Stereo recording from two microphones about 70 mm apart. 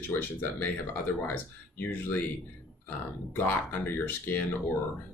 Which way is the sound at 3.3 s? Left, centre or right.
Left.